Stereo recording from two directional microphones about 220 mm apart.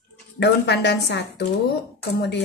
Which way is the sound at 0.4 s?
50° left (ahead or behind).